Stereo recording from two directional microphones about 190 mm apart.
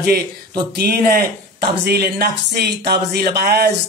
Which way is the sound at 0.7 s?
55° right (ahead or behind).